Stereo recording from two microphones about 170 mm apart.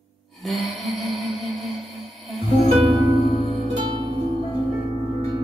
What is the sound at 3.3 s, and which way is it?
Music, 30° left (ahead or behind).